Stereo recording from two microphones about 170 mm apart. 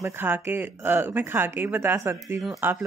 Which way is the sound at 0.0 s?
15° right (ahead or behind).